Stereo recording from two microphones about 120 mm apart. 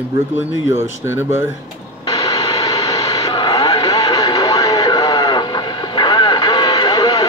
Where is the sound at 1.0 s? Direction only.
20° right (ahead or behind).